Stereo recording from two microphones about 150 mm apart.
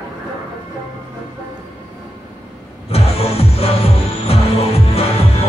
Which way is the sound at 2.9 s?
40° left (ahead or behind).